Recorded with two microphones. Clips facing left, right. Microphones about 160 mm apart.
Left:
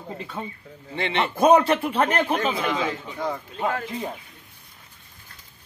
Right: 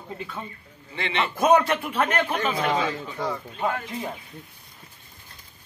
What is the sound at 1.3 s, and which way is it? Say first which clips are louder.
Speech: left 3 dB; 30° left (ahead or behind).